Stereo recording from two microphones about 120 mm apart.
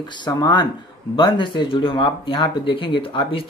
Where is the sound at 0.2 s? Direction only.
35° left (ahead or behind).